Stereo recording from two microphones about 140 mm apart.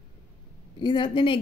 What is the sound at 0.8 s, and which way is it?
Speech, 35° left (ahead or behind).